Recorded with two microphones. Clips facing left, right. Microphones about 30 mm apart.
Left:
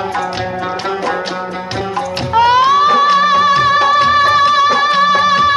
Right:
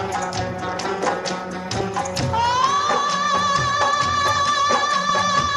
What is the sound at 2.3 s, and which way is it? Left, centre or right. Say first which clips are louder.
Music: left 10 dB; left.